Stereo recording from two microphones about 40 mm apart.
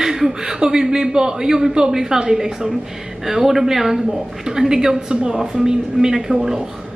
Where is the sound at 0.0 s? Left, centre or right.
Centre.